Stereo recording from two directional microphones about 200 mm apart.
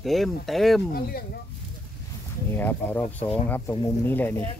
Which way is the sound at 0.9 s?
50° left (ahead or behind).